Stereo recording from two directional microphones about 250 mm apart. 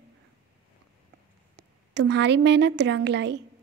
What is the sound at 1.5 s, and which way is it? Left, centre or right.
Speech, right.